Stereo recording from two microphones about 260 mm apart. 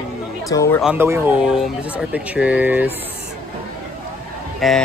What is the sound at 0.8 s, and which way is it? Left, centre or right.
Speech, centre.